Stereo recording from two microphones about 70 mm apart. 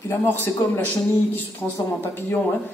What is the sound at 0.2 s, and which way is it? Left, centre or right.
Speech, left.